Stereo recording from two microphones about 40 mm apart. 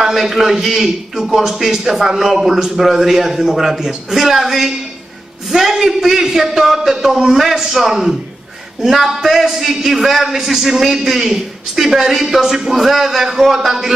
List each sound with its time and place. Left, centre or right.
0.0 s a man's voice: centre